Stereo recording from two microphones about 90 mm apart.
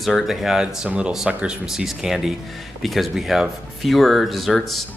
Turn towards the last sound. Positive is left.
turn(degrees=0)  # may be behind; listen again after turning